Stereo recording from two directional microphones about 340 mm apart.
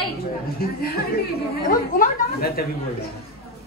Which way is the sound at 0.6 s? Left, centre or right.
Left.